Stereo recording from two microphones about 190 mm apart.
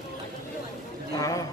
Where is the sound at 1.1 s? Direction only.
15° left (ahead or behind).